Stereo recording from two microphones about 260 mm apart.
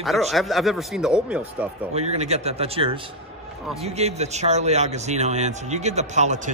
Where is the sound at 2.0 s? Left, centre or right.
Right.